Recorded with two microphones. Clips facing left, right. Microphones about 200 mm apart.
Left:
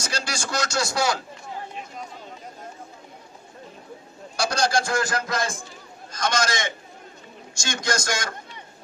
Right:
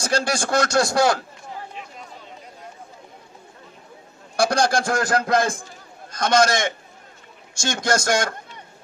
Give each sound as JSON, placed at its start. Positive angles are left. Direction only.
{"t": 0.0, "sound": "a man's voice", "side_deg": -55}
{"t": 4.4, "sound": "a man's voice", "side_deg": -55}